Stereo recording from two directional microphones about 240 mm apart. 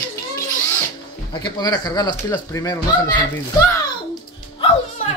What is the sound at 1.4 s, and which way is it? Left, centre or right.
Speech, centre.